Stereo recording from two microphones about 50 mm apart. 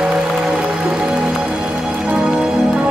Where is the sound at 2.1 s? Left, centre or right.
Centre.